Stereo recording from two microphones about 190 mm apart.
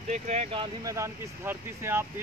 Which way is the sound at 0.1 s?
35° right (ahead or behind).